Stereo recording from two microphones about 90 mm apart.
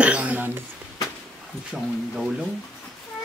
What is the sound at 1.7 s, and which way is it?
Speech, 10° right (ahead or behind).